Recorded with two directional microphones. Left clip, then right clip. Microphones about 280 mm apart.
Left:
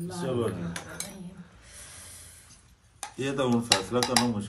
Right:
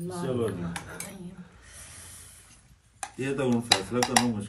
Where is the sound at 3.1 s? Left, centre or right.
Centre.